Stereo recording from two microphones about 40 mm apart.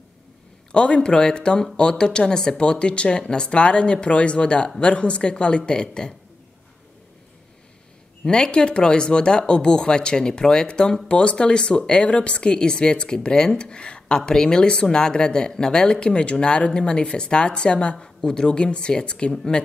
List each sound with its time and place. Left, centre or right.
0.7 s speech: left
8.3 s speech: left